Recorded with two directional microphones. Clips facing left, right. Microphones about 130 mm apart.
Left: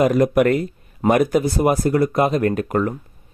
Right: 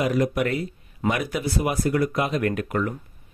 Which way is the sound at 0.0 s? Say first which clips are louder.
Left 7 dB; 50° left (ahead or behind).